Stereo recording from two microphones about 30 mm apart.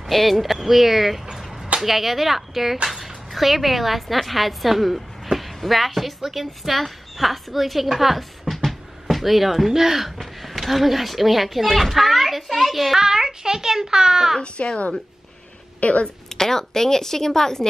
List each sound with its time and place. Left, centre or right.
0.1 s a woman's voice: centre
10.1 s a woman's voice: centre
12.9 s a child's voice: centre
14.6 s speech: left
15.8 s speech: left
16.3 s speech: centre